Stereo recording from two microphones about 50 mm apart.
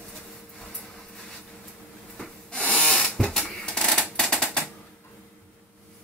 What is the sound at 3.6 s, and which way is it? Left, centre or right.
Typewriter, centre.